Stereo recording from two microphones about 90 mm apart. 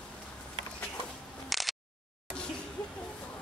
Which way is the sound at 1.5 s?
Centre (ahead or behind).